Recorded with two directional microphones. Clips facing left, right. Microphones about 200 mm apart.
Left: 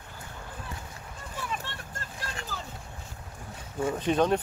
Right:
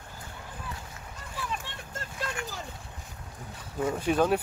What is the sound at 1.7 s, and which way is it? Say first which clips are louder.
Vehicle: left 1 dB; 15° right (ahead or behind).